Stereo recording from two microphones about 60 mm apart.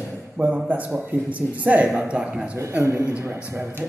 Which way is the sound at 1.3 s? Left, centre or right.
Right.